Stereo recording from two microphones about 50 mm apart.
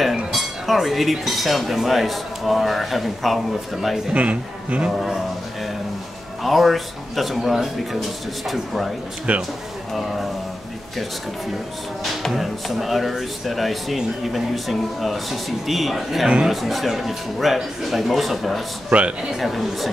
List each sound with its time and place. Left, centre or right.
0.3 s speech: centre
4.1 s speech: right
4.9 s speech: centre
6.4 s speech: centre
9.3 s speech: right
9.9 s speech: centre
12.0 s speech: centre
18.9 s speech: right
19.4 s speech: centre